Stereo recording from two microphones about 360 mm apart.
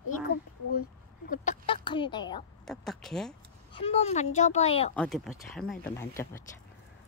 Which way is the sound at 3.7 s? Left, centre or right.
Centre.